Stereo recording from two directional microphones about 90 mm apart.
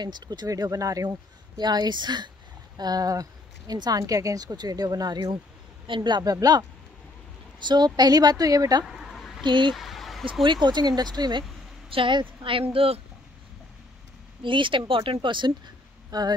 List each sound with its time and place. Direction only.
0.0 s speech: 50° right (ahead or behind)
1.6 s speech: 50° right (ahead or behind)
7.6 s speech: 50° right (ahead or behind)
8.8 s a sound: 5° right (ahead or behind)
9.4 s speech: 60° right (ahead or behind)
9.7 s a sound: centre (ahead or behind)
10.4 s speech: 55° right (ahead or behind)
11.9 s a woman's voice: 65° right (ahead or behind)
14.4 s speech: 65° right (ahead or behind)
16.1 s speech: 50° right (ahead or behind)